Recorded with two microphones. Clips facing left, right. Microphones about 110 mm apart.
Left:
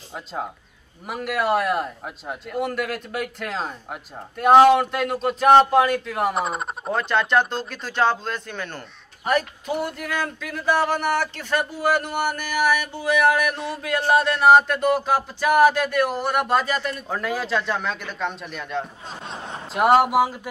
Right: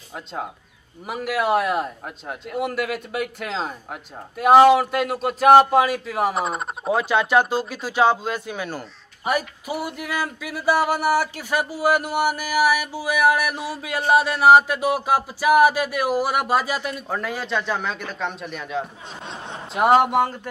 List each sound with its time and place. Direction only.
0.1 s a man's voice: centre (ahead or behind)